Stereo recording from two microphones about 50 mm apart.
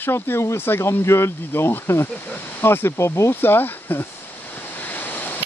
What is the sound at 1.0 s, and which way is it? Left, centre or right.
Speech, left.